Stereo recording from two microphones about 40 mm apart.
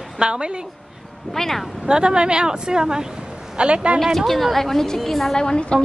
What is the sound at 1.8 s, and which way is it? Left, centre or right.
Speech, right.